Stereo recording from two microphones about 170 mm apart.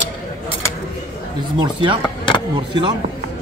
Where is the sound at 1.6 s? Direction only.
25° right (ahead or behind).